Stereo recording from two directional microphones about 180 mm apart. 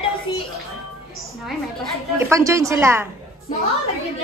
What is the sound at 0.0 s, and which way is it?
Music, 30° left (ahead or behind).